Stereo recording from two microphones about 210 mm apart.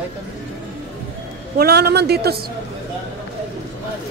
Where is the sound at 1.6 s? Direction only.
50° right (ahead or behind).